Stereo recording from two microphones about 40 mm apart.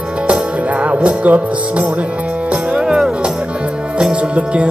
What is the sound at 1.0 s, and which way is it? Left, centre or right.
Music, right.